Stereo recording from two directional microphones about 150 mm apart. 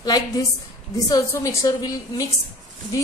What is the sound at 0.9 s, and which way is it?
A woman's voice, 25° left (ahead or behind).